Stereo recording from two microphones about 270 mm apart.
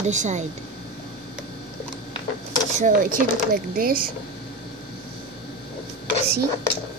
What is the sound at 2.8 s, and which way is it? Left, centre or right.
Speech, right.